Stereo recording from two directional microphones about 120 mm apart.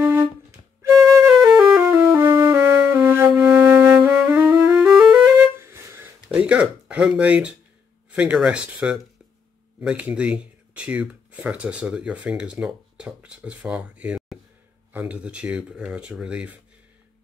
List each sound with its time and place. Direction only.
0.0 s music: 20° right (ahead or behind)
1.1 s flute: 25° right (ahead or behind)
1.8 s music: 20° right (ahead or behind)
6.2 s a sound: 10° right (ahead or behind)
8.1 s speech: 10° right (ahead or behind)